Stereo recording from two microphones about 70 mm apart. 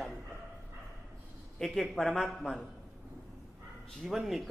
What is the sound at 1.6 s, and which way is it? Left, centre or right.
Speech, centre.